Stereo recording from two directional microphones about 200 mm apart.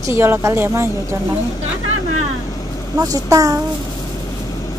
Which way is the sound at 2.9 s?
20° right (ahead or behind).